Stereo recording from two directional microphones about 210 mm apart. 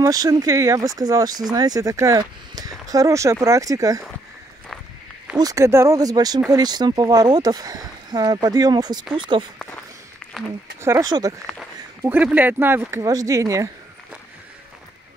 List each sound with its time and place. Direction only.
0.0 s speech: 15° right (ahead or behind)
5.4 s speech: 15° right (ahead or behind)
10.8 s speech: 15° right (ahead or behind)